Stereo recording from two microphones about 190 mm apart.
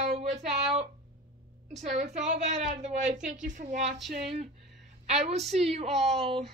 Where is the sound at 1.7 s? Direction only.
40° right (ahead or behind).